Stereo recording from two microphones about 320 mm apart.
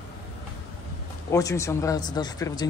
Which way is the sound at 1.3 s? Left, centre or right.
Centre.